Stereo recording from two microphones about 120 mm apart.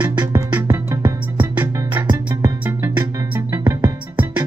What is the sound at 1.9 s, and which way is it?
Music, 35° right (ahead or behind).